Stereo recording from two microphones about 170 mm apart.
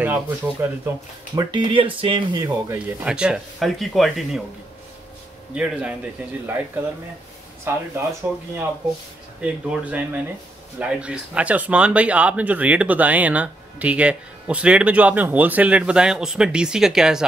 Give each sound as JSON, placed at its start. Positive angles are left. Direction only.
{"t": 0.0, "sound": "speech", "side_deg": -10}
{"t": 1.3, "sound": "speech", "side_deg": -30}
{"t": 3.0, "sound": "speech", "side_deg": -5}
{"t": 5.5, "sound": "speech", "side_deg": -5}
{"t": 7.6, "sound": "speech", "side_deg": -15}